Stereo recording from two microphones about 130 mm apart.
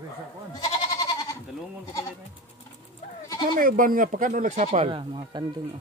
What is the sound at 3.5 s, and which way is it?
Speech, 90° right.